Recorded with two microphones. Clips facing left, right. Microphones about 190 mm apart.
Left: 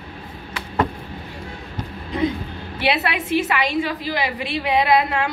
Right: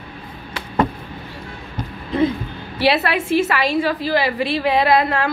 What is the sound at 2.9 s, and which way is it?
A woman's voice, 15° left (ahead or behind).